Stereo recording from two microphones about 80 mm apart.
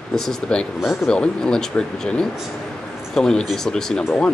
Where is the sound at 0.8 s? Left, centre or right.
Left.